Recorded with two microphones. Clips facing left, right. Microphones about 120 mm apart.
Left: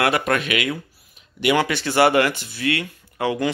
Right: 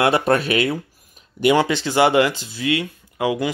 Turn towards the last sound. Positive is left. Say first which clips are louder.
# right 1 dB
turn(degrees=-15)  # may be behind; listen again after turning